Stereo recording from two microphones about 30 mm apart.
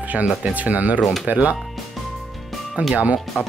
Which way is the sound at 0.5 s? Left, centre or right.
Right.